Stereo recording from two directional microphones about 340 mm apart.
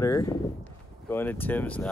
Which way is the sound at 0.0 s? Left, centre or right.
Centre.